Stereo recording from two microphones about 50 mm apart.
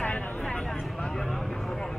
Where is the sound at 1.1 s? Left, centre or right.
Centre.